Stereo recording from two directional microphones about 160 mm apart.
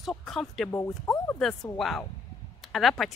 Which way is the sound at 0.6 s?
15° left (ahead or behind).